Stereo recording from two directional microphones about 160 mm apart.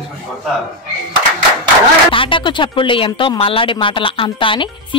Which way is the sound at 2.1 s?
30° left (ahead or behind).